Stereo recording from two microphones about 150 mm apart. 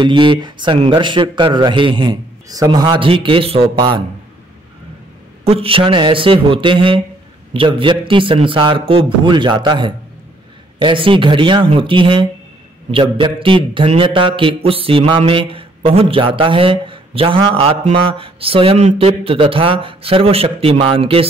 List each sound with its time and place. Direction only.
0.0 s a man's voice: 30° right (ahead or behind)
5.4 s a man's voice: 40° right (ahead or behind)